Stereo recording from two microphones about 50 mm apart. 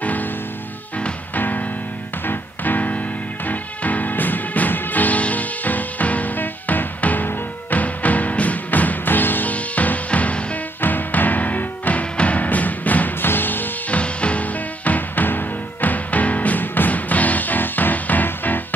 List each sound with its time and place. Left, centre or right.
0.0 s music: left
10.8 s music: left
13.8 s music: left